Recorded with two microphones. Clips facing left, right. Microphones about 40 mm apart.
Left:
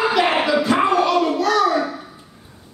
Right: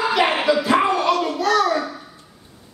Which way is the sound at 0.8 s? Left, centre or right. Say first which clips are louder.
Left 2 dB; centre.